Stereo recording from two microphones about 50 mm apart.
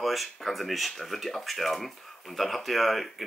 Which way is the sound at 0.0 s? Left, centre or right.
Centre.